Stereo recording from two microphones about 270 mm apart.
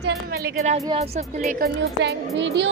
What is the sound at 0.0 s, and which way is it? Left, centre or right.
Music, right.